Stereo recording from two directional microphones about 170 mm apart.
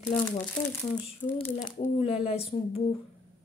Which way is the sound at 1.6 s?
45° left (ahead or behind).